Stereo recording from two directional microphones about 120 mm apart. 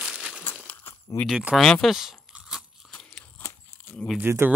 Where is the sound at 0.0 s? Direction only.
5° right (ahead or behind).